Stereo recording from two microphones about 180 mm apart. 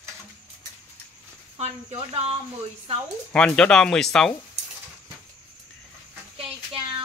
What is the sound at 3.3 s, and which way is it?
A man's voice, 5° left (ahead or behind).